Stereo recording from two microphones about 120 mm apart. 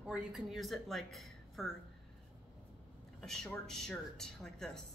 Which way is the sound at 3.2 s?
5° left (ahead or behind).